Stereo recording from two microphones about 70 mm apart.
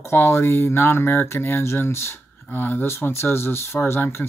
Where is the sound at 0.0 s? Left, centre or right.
Left.